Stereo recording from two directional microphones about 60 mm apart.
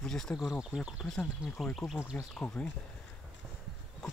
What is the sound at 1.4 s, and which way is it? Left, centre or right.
Speech, centre.